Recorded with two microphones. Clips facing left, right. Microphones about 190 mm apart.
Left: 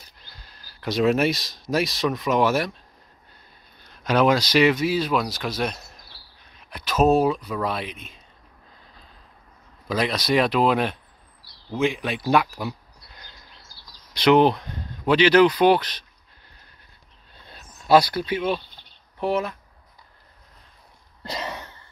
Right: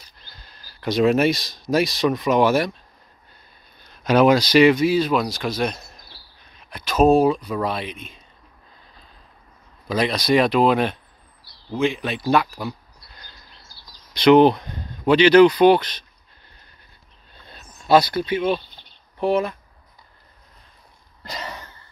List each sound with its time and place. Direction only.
0.4 s speech: 5° left (ahead or behind)
4.0 s speech: 5° right (ahead or behind)
9.8 s speech: centre (ahead or behind)
14.1 s speech: 5° left (ahead or behind)
17.5 s speech: 5° left (ahead or behind)
21.2 s cough: 25° left (ahead or behind)